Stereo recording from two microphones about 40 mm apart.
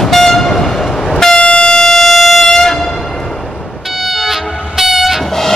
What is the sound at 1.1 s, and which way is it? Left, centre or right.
Vehicle, centre.